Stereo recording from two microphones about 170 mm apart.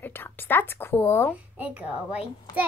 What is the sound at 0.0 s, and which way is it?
Speech, 10° left (ahead or behind).